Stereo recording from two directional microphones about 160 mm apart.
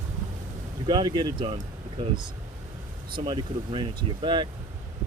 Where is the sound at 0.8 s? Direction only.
30° right (ahead or behind).